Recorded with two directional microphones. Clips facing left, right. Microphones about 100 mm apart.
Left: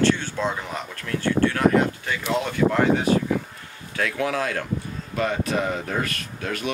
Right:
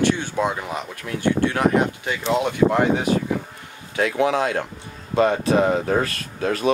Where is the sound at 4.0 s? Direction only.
20° right (ahead or behind).